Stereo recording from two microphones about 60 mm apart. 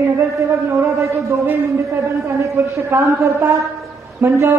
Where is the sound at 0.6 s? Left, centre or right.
Right.